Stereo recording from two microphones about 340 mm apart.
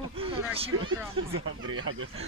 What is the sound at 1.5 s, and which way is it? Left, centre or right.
Speech, right.